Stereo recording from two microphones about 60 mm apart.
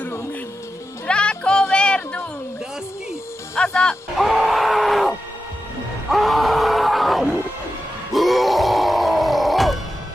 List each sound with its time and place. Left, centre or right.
1.0 s music: centre
3.5 s speech: centre
4.1 s groan: centre
6.0 s music: centre
8.1 s grunt: centre